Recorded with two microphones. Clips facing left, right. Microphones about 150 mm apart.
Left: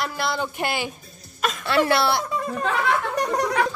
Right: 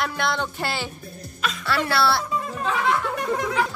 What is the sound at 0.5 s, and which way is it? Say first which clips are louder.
Speech: left 2 dB; 15° left (ahead or behind).